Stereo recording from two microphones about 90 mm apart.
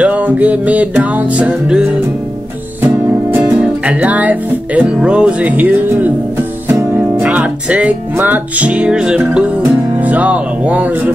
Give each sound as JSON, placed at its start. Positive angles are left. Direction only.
{"t": 0.0, "sound": "music", "side_deg": -15}
{"t": 3.3, "sound": "music", "side_deg": -25}
{"t": 9.9, "sound": "speech", "side_deg": -15}